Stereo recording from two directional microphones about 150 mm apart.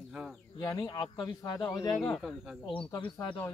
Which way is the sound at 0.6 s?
30° left (ahead or behind).